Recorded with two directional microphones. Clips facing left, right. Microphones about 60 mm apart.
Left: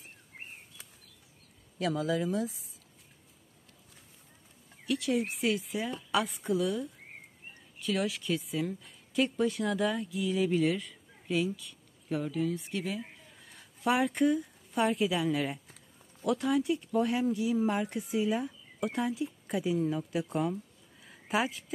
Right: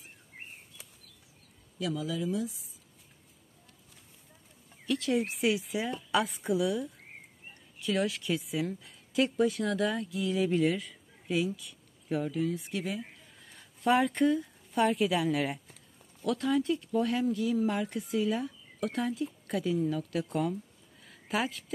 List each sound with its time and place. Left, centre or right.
1.8 s speech: left
4.8 s a woman's voice: centre
16.2 s speech: centre
16.4 s a woman's voice: centre
16.9 s speech: left
21.0 s a sound: centre